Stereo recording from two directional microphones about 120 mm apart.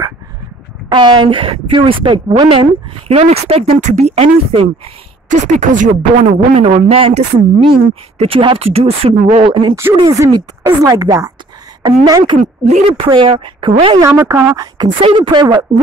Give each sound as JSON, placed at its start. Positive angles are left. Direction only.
{"t": 0.8, "sound": "a woman's voice", "side_deg": -40}
{"t": 3.1, "sound": "speech", "side_deg": -60}
{"t": 3.8, "sound": "speech", "side_deg": -65}
{"t": 5.3, "sound": "speech", "side_deg": -90}
{"t": 6.7, "sound": "a woman's voice", "side_deg": -55}
{"t": 10.0, "sound": "a woman's voice", "side_deg": -25}
{"t": 12.4, "sound": "speech", "side_deg": -75}
{"t": 12.9, "sound": "a woman's voice", "side_deg": -45}
{"t": 14.0, "sound": "a woman's voice", "side_deg": -25}
{"t": 15.0, "sound": "a woman's voice", "side_deg": -45}